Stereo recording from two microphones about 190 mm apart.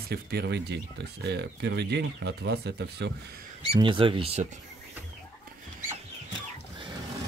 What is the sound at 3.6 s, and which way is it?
Speech, 25° right (ahead or behind).